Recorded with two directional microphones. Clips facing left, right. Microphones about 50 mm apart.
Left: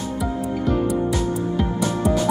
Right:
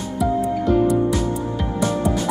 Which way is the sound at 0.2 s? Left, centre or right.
Centre.